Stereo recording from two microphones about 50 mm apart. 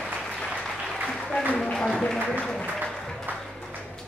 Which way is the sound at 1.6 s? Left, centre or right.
Centre.